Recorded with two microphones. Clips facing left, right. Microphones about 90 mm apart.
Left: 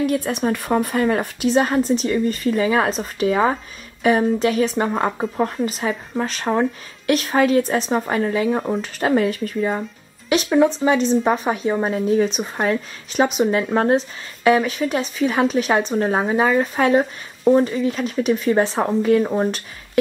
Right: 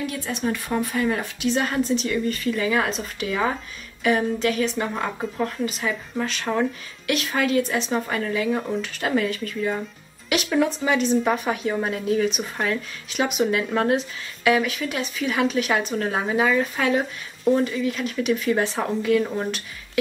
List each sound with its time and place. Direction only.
0.0 s a woman's voice: 50° left (ahead or behind)
10.3 s speech: 25° left (ahead or behind)